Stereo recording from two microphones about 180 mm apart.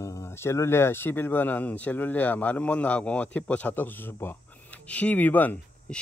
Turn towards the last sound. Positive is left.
turn(degrees=10)  # may be behind; listen again after turning